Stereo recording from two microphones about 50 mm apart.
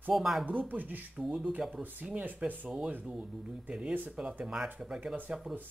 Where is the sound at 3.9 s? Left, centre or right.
Right.